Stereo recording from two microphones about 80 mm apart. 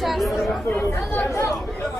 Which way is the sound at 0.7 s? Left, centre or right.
Left.